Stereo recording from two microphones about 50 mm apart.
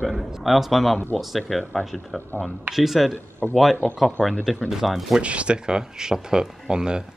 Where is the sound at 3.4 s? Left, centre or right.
Centre.